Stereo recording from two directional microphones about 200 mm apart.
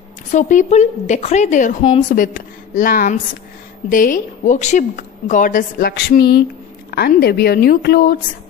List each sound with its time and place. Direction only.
0.3 s a woman's voice: 40° left (ahead or behind)